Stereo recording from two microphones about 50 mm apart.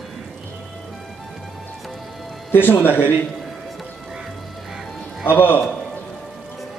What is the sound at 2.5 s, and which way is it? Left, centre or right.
Speech, left.